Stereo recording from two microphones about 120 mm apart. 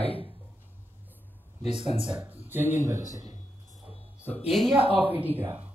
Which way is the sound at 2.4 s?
15° right (ahead or behind).